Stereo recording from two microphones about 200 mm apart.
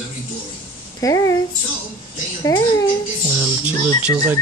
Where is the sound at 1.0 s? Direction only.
15° left (ahead or behind).